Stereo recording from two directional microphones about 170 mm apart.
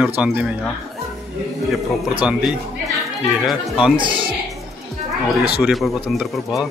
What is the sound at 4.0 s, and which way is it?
Speech, 30° right (ahead or behind).